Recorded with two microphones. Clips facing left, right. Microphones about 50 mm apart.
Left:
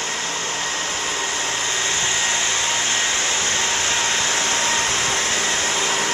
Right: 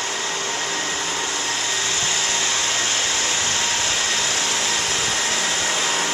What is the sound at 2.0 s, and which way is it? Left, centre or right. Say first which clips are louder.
Hair dryer: left 1 dB; left.